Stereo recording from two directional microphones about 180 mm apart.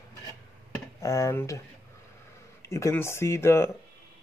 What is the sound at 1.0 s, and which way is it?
Speech, 15° left (ahead or behind).